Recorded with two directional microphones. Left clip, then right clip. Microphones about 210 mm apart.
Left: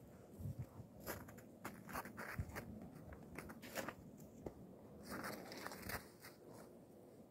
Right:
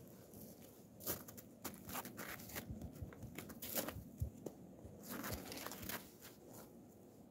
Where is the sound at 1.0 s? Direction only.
40° right (ahead or behind).